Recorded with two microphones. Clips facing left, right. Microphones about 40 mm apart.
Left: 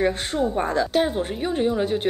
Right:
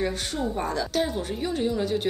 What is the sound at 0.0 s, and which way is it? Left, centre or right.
Speech, left.